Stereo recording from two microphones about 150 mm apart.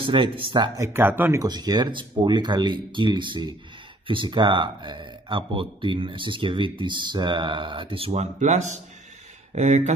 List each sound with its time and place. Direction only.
0.0 s speech: 35° right (ahead or behind)
0.7 s speech: 15° right (ahead or behind)
1.4 s speech: 25° right (ahead or behind); by 9.9 s 50° right (ahead or behind)